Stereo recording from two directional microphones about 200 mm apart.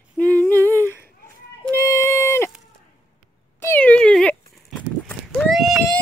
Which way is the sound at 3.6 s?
10° left (ahead or behind).